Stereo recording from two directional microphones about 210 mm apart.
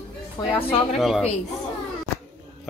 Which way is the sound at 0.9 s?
Centre (ahead or behind).